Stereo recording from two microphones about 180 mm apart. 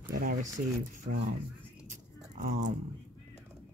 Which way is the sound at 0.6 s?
50° right (ahead or behind).